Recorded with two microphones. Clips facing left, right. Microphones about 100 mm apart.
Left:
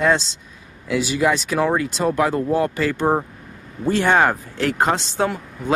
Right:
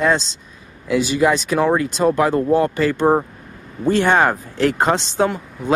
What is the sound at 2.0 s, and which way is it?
Speech, 15° right (ahead or behind).